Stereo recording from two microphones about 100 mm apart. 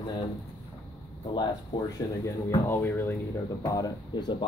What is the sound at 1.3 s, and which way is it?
Speech, 45° left (ahead or behind).